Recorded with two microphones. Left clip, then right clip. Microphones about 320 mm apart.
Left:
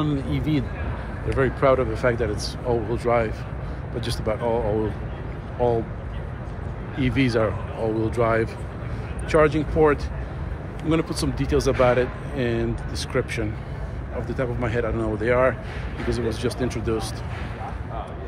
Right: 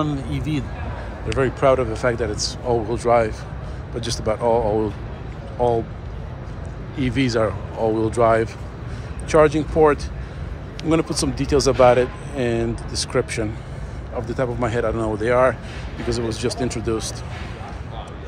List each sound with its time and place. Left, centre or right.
0.0 s speech: centre
7.0 s speech: centre